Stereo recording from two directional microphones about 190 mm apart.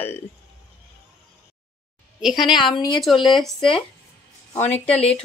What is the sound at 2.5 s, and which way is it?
Speech, 25° left (ahead or behind).